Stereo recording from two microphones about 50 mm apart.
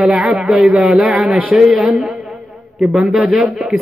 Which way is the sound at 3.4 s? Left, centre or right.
Centre.